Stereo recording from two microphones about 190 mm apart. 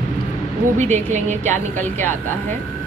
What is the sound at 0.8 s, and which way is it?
A woman's voice, 40° right (ahead or behind).